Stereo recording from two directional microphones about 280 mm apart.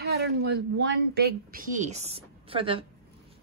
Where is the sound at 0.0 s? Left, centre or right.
Right.